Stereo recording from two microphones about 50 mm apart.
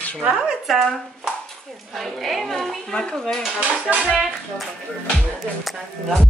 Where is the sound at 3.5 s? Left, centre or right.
Right.